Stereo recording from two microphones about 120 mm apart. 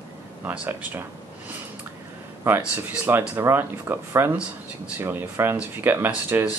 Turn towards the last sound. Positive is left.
turn(degrees=-15)  # may be behind; listen again after turning